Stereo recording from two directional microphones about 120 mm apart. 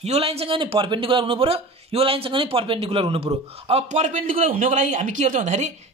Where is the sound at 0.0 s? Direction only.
60° right (ahead or behind).